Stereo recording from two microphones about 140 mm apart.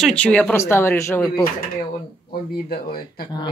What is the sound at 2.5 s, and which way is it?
Speech, 90° left.